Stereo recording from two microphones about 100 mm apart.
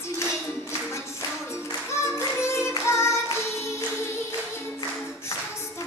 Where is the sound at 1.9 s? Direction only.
30° left (ahead or behind).